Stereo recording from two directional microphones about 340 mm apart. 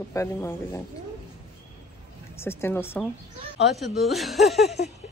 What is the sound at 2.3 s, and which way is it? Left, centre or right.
Speech, centre.